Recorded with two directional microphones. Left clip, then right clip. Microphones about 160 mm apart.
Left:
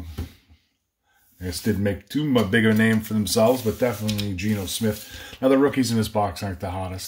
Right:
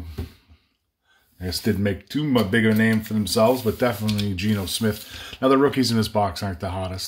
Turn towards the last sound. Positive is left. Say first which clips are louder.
# right 2 dB
turn(degrees=-20)  # may be behind; listen again after turning